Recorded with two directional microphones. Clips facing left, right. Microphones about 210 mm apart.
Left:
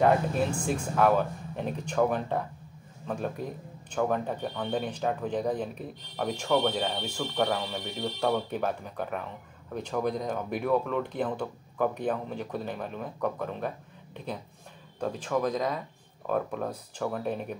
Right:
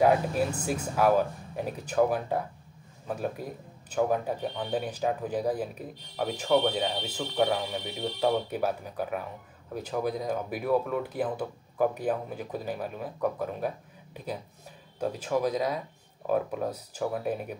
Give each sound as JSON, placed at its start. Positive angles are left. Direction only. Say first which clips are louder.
{"t": 0.0, "sound": "speech", "louder": "even", "side_deg": -5}